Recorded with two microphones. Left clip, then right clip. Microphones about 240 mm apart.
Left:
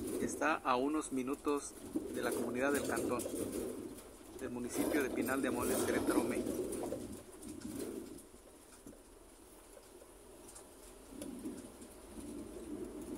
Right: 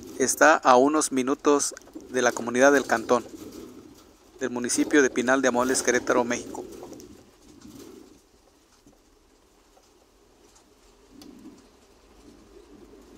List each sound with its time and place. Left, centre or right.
0.2 s speech: right
4.4 s speech: right